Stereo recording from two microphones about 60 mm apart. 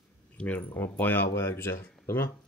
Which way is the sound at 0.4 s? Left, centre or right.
Left.